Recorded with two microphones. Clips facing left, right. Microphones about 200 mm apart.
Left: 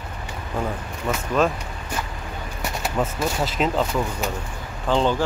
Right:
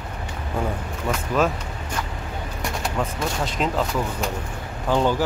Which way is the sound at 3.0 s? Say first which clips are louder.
Left 3 dB; 5° left (ahead or behind).